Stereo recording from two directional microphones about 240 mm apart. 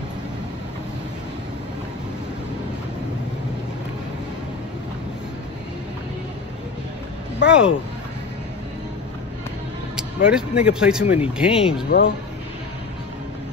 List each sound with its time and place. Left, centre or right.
7.4 s speech: centre
9.9 s speech: centre
11.9 s speech: left